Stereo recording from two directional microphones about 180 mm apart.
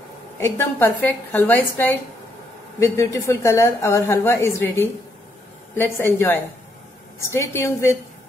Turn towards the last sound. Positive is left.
turn(degrees=15)  # may be behind; listen again after turning